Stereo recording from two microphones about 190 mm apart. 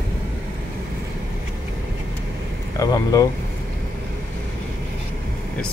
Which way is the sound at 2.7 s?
20° left (ahead or behind).